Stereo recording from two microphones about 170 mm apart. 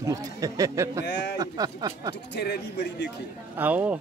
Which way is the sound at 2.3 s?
80° left.